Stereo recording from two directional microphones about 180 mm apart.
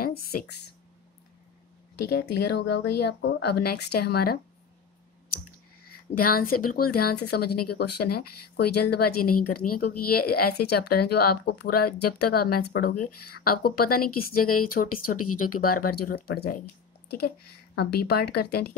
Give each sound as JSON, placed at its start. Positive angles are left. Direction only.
{"t": 0.0, "sound": "speech", "side_deg": 60}
{"t": 2.0, "sound": "speech", "side_deg": 65}
{"t": 6.1, "sound": "speech", "side_deg": 55}
{"t": 17.7, "sound": "speech", "side_deg": 65}